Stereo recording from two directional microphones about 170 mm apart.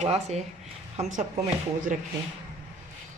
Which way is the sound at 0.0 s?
40° right (ahead or behind).